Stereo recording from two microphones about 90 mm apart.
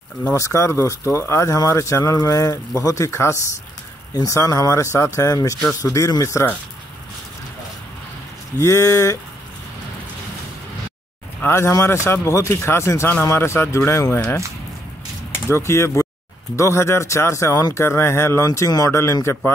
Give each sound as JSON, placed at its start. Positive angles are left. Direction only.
{"t": 0.3, "sound": "speech", "side_deg": 35}
{"t": 8.5, "sound": "speech", "side_deg": 35}
{"t": 11.4, "sound": "speech", "side_deg": 30}
{"t": 15.4, "sound": "speech", "side_deg": 30}